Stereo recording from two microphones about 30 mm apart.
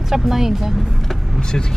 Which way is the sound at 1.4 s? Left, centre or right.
Left.